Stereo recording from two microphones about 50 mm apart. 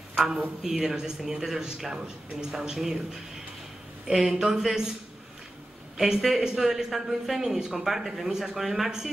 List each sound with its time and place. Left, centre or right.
0.1 s a sound: centre
0.6 s speech: centre
4.4 s speech: centre
5.9 s speech: centre